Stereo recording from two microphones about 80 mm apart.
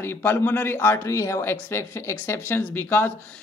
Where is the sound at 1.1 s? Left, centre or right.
Left.